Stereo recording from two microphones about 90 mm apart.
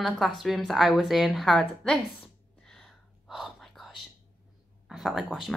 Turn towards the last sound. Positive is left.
turn(degrees=0)  # may be behind; listen again after turning